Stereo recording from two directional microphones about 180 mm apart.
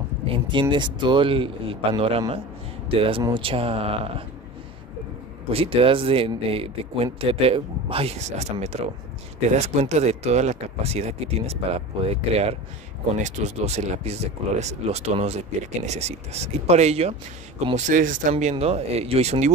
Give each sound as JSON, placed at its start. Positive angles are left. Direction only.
{"t": 0.3, "sound": "speech", "side_deg": -25}
{"t": 5.5, "sound": "speech", "side_deg": -30}
{"t": 18.3, "sound": "speech", "side_deg": -35}